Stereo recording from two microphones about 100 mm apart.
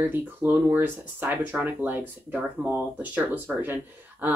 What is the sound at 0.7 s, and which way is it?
Speech, 20° right (ahead or behind).